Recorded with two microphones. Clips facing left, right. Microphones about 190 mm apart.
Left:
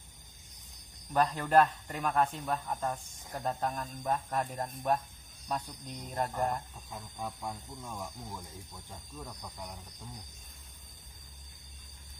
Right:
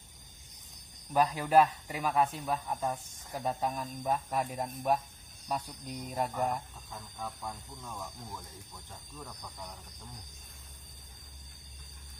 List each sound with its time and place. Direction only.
1.1 s speech: 10° right (ahead or behind)
6.9 s speech: 10° left (ahead or behind)